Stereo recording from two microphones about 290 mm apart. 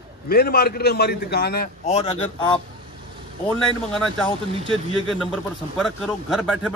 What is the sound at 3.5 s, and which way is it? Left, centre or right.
Speech, centre.